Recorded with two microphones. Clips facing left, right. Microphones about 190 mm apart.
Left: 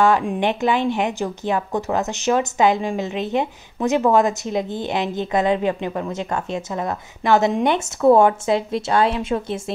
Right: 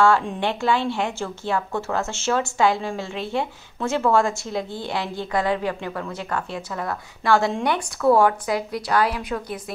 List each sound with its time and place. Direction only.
0.0 s a woman's voice: 15° left (ahead or behind)